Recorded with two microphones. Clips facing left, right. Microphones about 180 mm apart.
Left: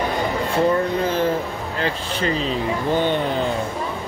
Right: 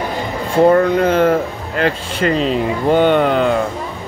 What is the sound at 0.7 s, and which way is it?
Speech, 75° right (ahead or behind).